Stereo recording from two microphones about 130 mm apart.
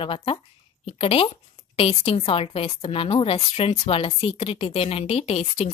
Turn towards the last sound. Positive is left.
turn(degrees=50)  # may be behind; listen again after turning